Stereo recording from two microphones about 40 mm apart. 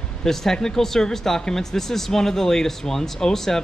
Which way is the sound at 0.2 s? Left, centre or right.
Centre.